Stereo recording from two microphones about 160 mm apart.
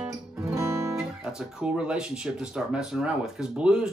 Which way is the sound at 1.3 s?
5° right (ahead or behind).